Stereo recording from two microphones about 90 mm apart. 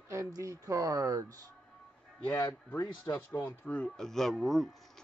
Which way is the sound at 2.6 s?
20° left (ahead or behind).